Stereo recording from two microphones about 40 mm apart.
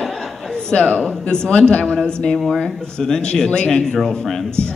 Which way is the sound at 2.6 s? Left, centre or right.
Centre.